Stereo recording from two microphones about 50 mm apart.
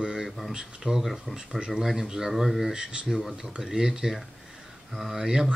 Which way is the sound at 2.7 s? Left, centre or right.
Centre.